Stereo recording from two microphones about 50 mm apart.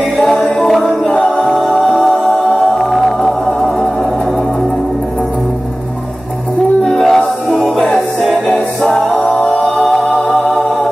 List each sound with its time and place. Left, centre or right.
0.2 s music: centre
1.0 s a capella: centre
1.4 s music: centre
6.6 s music: centre